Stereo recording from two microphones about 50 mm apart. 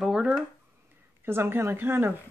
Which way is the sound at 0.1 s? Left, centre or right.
Centre.